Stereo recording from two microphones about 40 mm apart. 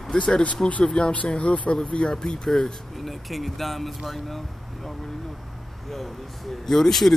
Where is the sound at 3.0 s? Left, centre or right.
Centre.